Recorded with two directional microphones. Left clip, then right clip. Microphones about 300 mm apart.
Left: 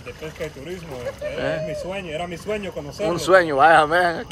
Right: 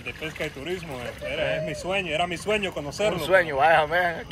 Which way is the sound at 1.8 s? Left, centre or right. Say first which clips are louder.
Right 3 dB; centre.